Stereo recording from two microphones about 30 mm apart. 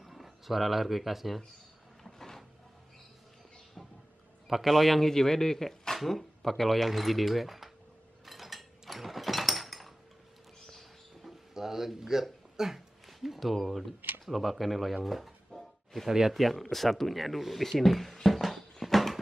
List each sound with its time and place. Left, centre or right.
0.0 s speech: centre
2.0 s a sound: centre
4.6 s speech: centre
5.9 s speech: centre
8.3 s mechanisms: centre
11.5 s a sound: centre
12.0 s speech: centre
15.5 s music: centre
16.1 s speech: centre
16.3 s speech: centre
18.2 s a sound: centre